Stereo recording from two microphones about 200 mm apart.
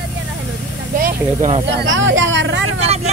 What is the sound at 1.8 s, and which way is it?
Speech, 70° right (ahead or behind).